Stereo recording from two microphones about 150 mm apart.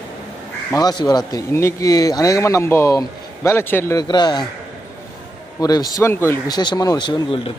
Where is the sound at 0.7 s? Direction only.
25° left (ahead or behind).